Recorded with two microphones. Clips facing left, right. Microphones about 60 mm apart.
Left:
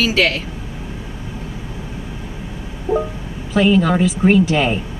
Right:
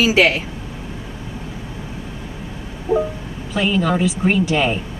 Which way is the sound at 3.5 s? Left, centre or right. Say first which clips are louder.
Left 4 dB; centre.